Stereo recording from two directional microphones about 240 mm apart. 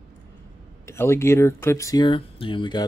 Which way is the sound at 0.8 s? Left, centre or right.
Centre.